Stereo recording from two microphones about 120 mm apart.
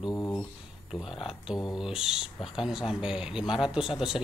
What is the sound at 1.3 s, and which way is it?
Speech, 5° right (ahead or behind).